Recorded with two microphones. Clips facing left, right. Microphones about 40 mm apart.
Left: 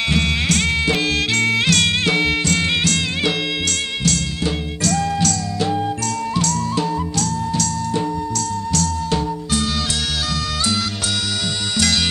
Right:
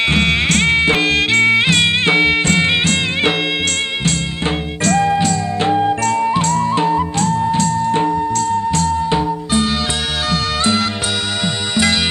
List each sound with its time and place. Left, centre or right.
0.0 s music: right
4.8 s music: right
11.4 s music: right